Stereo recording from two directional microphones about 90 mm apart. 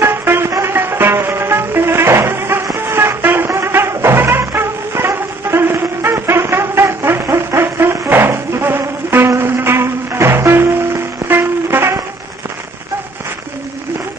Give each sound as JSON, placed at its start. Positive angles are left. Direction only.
{"t": 0.0, "sound": "music", "side_deg": -25}